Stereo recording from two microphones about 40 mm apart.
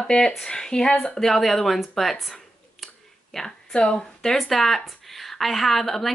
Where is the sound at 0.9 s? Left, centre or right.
Left.